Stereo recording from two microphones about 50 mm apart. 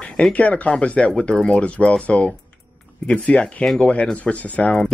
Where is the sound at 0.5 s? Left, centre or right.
Left.